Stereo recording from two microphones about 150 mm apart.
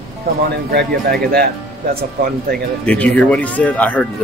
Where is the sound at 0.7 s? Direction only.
90° right.